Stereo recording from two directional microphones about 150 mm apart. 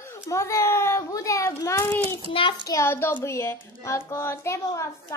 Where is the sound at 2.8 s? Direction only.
15° left (ahead or behind).